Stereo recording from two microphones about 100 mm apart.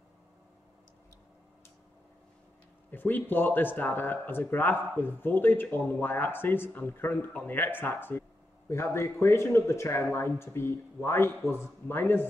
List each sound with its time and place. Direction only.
2.9 s speech: 20° left (ahead or behind)